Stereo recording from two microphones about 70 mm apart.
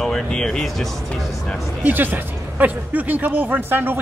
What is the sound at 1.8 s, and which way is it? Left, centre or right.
Speech, right.